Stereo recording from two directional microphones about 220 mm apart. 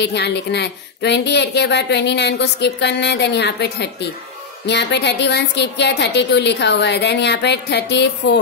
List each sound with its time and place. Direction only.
0.0 s a woman's voice: 50° left (ahead or behind)